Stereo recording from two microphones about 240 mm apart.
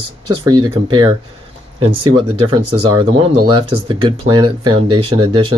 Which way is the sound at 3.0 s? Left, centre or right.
Right.